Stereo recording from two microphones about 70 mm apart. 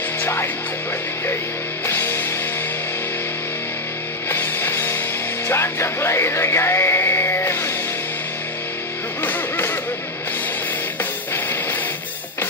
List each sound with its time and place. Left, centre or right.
0.2 s music: left
1.9 s music: left
4.3 s music: left
9.2 s music: left